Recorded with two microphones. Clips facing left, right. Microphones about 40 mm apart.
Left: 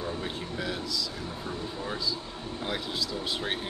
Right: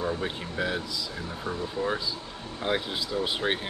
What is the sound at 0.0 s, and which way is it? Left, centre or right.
Speech, right.